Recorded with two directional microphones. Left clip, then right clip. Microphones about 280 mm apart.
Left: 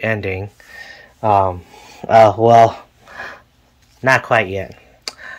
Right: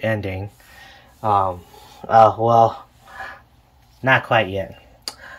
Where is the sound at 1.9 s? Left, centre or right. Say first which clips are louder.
Left 3 dB; left.